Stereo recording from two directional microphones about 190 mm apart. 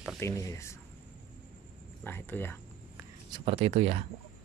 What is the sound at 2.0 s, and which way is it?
Speech, 10° left (ahead or behind).